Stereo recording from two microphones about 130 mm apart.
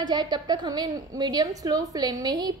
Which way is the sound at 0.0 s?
30° right (ahead or behind).